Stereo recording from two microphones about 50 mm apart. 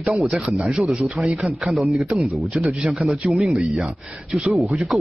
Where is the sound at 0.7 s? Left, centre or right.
Centre.